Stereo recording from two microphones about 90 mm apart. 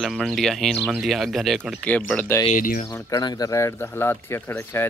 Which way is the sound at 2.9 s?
35° left (ahead or behind).